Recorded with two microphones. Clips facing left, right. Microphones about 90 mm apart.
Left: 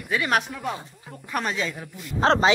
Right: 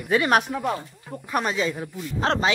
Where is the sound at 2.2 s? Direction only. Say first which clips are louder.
Left 4 dB; 35° left (ahead or behind).